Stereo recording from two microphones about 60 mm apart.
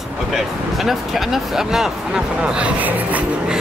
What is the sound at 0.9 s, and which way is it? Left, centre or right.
Speech, centre.